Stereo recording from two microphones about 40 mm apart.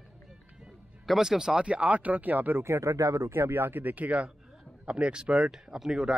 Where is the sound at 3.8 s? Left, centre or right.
Right.